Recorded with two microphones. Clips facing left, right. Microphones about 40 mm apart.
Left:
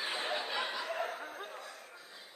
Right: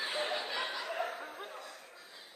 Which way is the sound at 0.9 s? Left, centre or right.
Centre.